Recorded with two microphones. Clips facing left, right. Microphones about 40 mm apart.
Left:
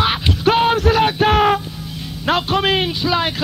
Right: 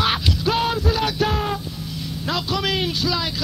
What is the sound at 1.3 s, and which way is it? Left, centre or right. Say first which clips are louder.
Music: left 10 dB; left.